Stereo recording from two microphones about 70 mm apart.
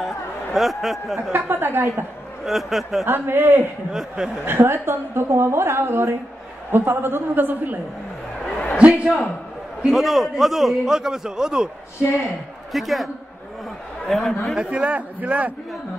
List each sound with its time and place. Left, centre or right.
0.0 s speech: centre
1.3 s a woman's voice: right
2.4 s a man's voice: centre
3.1 s a woman's voice: right
8.7 s a man's voice: centre
12.7 s a man's voice: centre
14.5 s a man's voice: centre